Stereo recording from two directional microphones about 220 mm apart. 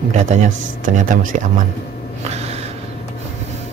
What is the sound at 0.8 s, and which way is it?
Speech, 35° right (ahead or behind).